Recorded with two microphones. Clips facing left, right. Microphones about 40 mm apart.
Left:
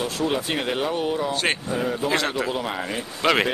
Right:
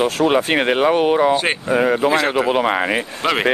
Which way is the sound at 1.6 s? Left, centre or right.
Right.